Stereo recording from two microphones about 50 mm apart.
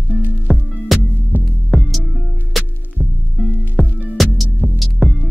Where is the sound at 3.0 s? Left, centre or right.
Right.